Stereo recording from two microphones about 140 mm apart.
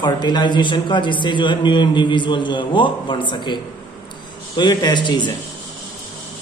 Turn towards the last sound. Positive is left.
turn(degrees=35)  # may be behind; listen again after turning